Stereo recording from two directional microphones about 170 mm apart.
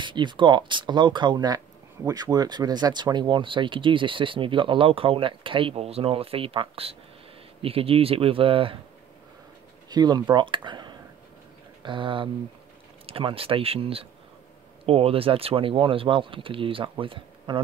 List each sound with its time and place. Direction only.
0.0 s speech: 25° right (ahead or behind)
9.8 s speech: 25° right (ahead or behind)